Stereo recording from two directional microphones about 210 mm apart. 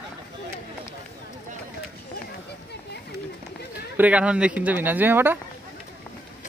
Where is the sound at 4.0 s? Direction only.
5° right (ahead or behind).